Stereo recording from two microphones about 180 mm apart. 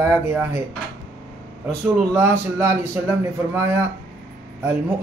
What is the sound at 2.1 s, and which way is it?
Speech, 10° right (ahead or behind).